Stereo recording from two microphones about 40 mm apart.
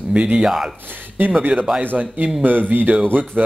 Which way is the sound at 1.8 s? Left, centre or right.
Right.